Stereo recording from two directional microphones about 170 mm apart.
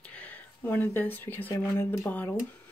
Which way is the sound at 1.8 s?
10° left (ahead or behind).